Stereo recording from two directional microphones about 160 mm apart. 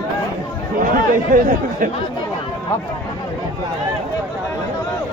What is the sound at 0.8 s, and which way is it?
Speech, 55° right (ahead or behind).